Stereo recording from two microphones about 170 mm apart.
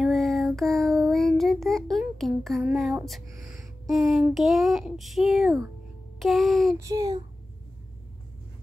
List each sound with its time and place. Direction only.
0.0 s child singing: centre (ahead or behind)
3.9 s a child's voice: centre (ahead or behind)
6.8 s child singing: 20° right (ahead or behind)